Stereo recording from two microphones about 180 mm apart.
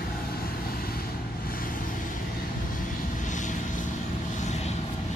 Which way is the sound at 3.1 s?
45° left (ahead or behind).